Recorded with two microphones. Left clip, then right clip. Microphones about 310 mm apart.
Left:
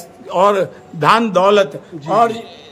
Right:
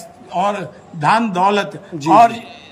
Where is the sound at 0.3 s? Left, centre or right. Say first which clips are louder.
Left 6 dB; centre.